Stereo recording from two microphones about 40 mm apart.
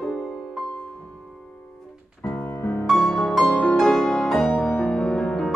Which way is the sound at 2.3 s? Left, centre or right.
Left.